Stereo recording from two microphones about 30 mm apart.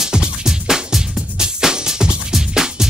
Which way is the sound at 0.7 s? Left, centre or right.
Centre.